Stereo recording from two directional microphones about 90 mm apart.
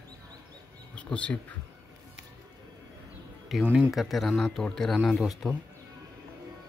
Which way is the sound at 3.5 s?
Centre (ahead or behind).